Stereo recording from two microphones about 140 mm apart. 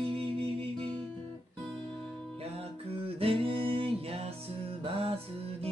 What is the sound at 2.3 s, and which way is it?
Music, 45° right (ahead or behind).